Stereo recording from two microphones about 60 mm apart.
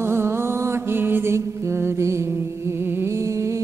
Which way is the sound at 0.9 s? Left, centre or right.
Right.